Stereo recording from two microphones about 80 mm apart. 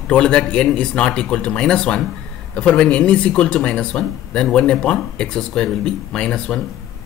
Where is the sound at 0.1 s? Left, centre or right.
Centre.